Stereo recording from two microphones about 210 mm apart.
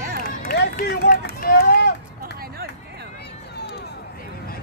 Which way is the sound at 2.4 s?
50° right (ahead or behind).